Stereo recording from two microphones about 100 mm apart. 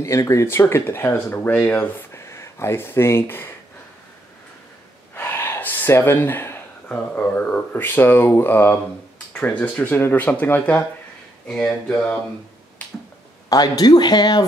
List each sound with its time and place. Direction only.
0.0 s speech: 30° left (ahead or behind)
5.1 s speech: 20° left (ahead or behind)
11.4 s speech: 5° left (ahead or behind)
13.5 s speech: 40° left (ahead or behind)